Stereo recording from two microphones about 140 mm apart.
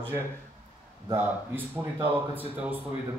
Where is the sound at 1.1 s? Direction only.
15° right (ahead or behind).